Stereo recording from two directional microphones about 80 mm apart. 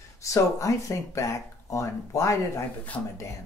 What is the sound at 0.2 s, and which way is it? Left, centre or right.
Speech, left.